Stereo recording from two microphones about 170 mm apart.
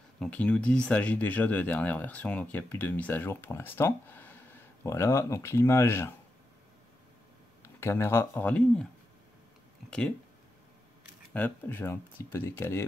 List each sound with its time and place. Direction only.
0.2 s speech: 5° left (ahead or behind)
7.6 s speech: 15° left (ahead or behind)
9.8 s speech: 5° left (ahead or behind)
11.3 s speech: 10° left (ahead or behind)